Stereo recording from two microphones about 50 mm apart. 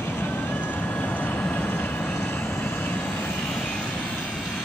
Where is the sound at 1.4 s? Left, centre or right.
Left.